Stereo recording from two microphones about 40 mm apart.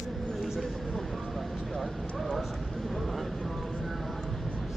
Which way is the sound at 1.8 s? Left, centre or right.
Centre.